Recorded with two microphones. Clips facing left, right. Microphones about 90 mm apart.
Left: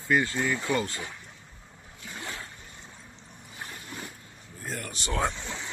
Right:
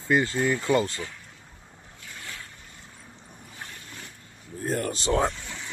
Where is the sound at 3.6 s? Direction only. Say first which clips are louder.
Left 3 dB; 15° left (ahead or behind).